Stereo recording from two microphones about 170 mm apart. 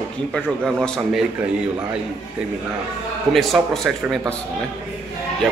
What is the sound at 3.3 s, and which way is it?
A man's voice, centre (ahead or behind).